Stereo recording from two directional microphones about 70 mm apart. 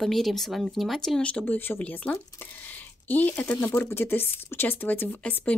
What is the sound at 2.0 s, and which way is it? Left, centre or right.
Speech, centre.